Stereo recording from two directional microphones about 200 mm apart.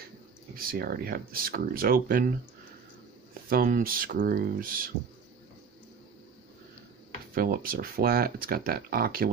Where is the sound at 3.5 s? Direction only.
45° right (ahead or behind).